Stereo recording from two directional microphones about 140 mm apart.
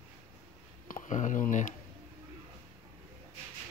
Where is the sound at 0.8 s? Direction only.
65° left (ahead or behind).